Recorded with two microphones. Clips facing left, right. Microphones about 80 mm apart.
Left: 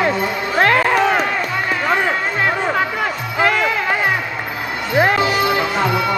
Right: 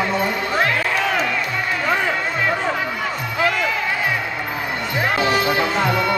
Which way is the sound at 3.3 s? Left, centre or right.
Left.